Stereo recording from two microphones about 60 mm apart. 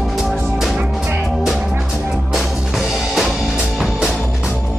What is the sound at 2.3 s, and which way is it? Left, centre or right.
Music, centre.